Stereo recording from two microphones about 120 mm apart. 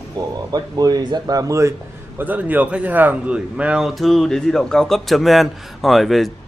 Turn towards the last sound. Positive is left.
turn(degrees=0)  # may be behind; listen again after turning